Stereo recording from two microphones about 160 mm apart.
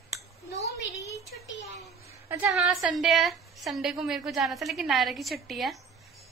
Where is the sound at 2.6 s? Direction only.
Centre (ahead or behind).